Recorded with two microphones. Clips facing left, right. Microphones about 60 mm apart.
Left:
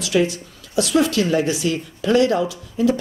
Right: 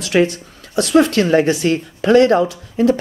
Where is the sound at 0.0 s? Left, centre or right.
Right.